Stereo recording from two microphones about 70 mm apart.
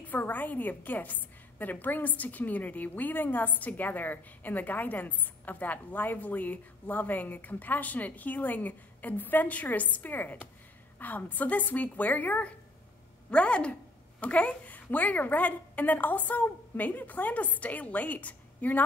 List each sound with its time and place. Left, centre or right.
0.0 s a woman's voice: left